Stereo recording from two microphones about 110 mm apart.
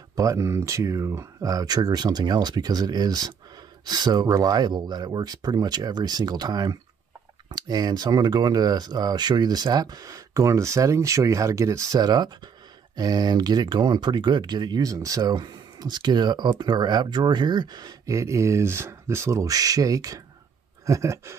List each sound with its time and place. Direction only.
0.1 s speech: 30° right (ahead or behind)